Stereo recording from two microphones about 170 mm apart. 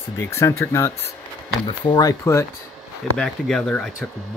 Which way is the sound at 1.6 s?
25° left (ahead or behind).